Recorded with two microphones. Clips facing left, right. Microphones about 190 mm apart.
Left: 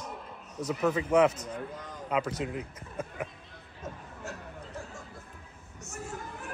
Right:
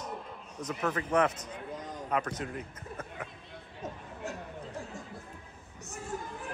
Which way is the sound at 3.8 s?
35° right (ahead or behind).